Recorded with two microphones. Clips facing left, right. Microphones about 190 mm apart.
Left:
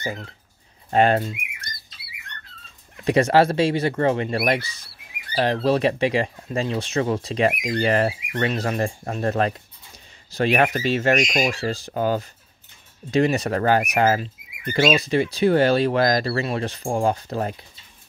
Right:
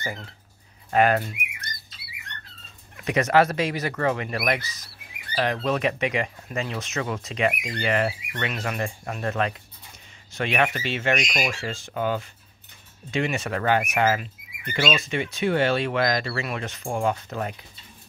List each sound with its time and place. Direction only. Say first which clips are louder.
0.8 s speech: left 2 dB; 30° left (ahead or behind)
3.1 s speech: left 3 dB; 30° left (ahead or behind)